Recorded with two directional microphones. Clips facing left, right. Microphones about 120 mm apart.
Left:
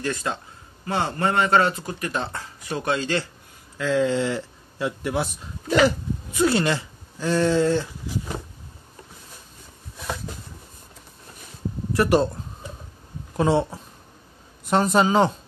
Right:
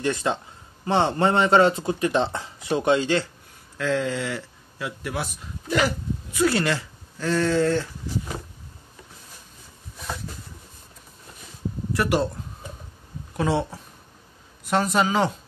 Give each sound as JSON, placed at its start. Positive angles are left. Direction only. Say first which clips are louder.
{"t": 0.0, "sound": "speech", "louder": "right 3 dB", "side_deg": -20}
{"t": 3.7, "sound": "a sound", "louder": "left 3 dB", "side_deg": 5}
{"t": 4.1, "sound": "speech", "louder": "left 5 dB", "side_deg": 25}
{"t": 11.9, "sound": "speech", "louder": "left 4 dB", "side_deg": 30}
{"t": 13.4, "sound": "speech", "louder": "left 3 dB", "side_deg": 30}
{"t": 14.7, "sound": "speech", "louder": "left 3 dB", "side_deg": 30}